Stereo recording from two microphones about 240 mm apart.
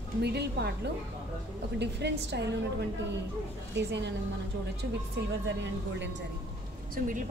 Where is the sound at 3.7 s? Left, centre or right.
Right.